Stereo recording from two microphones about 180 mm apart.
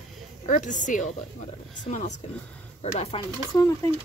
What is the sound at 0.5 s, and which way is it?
A woman's voice, 45° left (ahead or behind).